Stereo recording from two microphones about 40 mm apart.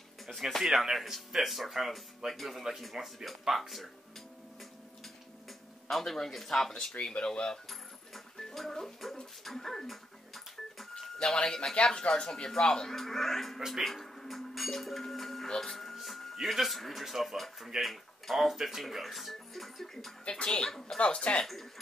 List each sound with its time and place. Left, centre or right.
0.6 s speech: centre
5.9 s speech: centre
7.7 s music: centre
11.4 s speech: centre
11.7 s speech: left
12.1 s speech: centre
13.7 s dishes: centre
15.4 s music: centre
15.7 s a sound: centre
16.4 s speech: centre
20.2 s speech: left
21.0 s speech: left